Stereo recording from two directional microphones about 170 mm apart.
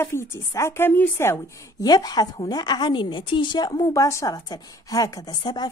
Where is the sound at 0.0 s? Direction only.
15° left (ahead or behind).